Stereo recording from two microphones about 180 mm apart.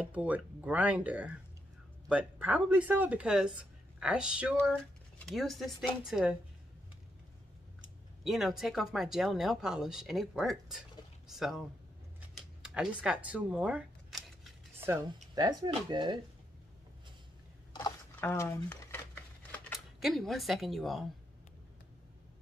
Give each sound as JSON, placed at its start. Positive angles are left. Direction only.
{"t": 0.0, "sound": "speech", "side_deg": -10}
{"t": 8.2, "sound": "speech", "side_deg": 0}
{"t": 12.4, "sound": "camera", "side_deg": -5}
{"t": 14.8, "sound": "speech", "side_deg": -15}
{"t": 17.7, "sound": "a sound", "side_deg": 15}
{"t": 20.0, "sound": "speech", "side_deg": 0}